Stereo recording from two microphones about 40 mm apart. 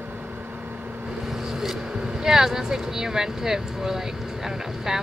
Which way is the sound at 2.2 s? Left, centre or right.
Centre.